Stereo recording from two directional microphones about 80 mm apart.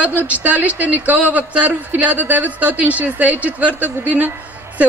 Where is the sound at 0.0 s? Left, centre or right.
Right.